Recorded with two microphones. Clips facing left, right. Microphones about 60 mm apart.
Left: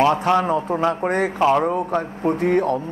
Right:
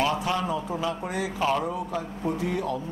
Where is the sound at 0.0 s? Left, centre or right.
Left.